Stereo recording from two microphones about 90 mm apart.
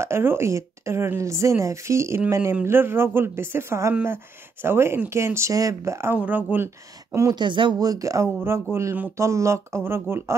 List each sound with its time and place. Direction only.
0.0 s a woman's voice: 30° right (ahead or behind)
6.2 s speech: 20° right (ahead or behind)
7.1 s speech: 35° right (ahead or behind)
7.3 s speech: 65° right (ahead or behind)
7.8 s a woman's voice: 40° right (ahead or behind)